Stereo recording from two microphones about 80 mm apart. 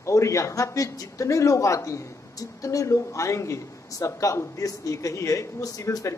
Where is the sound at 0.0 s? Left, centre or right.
Left.